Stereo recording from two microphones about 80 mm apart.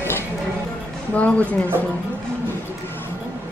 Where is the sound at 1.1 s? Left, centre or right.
Centre.